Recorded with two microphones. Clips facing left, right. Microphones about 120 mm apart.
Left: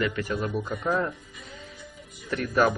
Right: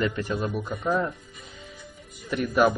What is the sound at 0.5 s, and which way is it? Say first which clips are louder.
Speech: even; 10° right (ahead or behind).